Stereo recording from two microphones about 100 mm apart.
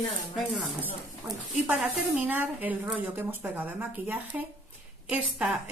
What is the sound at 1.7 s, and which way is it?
A woman's voice, 10° right (ahead or behind).